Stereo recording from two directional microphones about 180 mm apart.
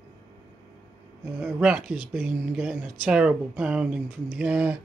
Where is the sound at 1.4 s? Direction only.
5° right (ahead or behind).